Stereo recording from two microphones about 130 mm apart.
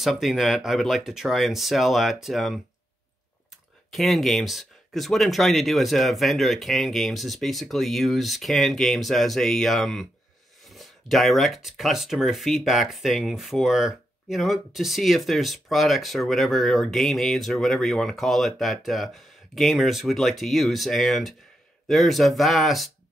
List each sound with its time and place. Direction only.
0.0 s speech: centre (ahead or behind)
3.9 s speech: centre (ahead or behind)